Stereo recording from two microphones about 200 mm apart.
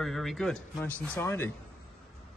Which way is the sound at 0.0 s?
Centre (ahead or behind).